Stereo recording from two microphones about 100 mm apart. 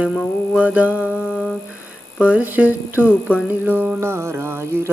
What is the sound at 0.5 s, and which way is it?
Music, 15° right (ahead or behind).